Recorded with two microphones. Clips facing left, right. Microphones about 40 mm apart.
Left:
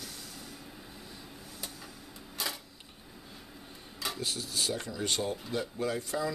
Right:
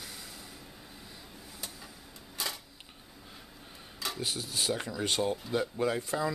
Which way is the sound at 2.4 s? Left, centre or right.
Centre.